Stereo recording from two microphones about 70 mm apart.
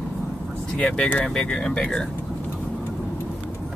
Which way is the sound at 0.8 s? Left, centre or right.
Centre.